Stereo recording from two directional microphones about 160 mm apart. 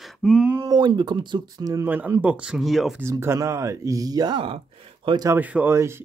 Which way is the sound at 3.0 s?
15° right (ahead or behind).